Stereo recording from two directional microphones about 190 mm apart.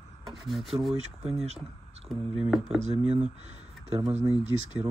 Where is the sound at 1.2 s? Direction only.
35° right (ahead or behind).